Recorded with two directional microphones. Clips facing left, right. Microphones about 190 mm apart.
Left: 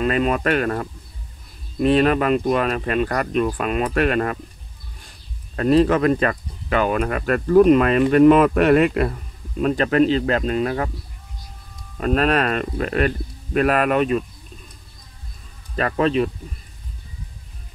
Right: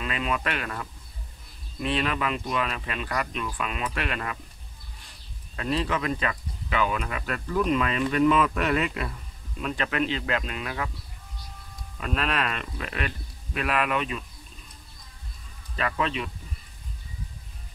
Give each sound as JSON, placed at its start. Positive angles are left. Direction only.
{"t": 0.0, "sound": "speech", "side_deg": 45}
{"t": 5.6, "sound": "speech", "side_deg": 50}
{"t": 12.0, "sound": "speech", "side_deg": 45}
{"t": 15.7, "sound": "speech", "side_deg": 45}